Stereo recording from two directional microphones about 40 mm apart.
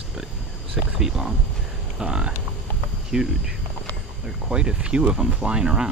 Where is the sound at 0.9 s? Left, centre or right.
Centre.